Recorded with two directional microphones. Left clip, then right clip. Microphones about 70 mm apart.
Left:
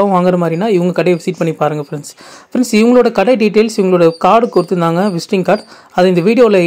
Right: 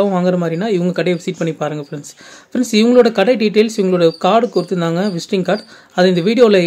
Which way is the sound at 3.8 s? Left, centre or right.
Left.